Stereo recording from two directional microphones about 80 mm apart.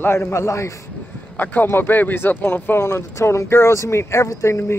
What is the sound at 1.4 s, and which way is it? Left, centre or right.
Speech, left.